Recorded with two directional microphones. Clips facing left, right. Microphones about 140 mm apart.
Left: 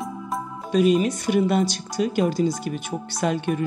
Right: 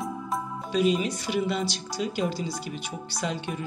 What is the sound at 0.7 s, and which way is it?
Speech, 50° left (ahead or behind).